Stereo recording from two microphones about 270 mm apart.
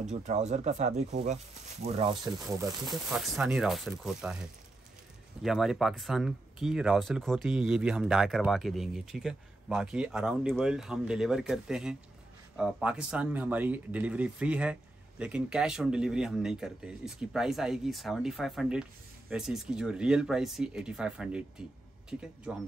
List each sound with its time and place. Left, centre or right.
0.1 s speech: right
2.9 s speech: centre